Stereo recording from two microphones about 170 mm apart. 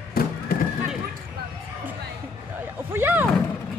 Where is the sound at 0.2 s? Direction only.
60° left (ahead or behind).